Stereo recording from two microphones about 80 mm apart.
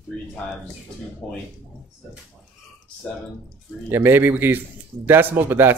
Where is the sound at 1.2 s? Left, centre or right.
Centre.